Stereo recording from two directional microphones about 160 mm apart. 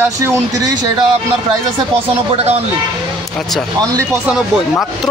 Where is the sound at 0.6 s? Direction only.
25° right (ahead or behind).